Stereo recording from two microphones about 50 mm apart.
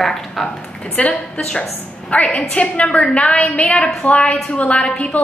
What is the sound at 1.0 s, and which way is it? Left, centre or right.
Speech, left.